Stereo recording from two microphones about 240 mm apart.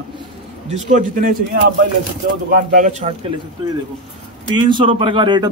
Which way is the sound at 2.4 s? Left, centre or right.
Right.